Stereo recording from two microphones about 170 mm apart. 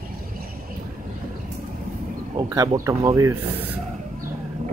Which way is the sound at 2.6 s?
20° right (ahead or behind).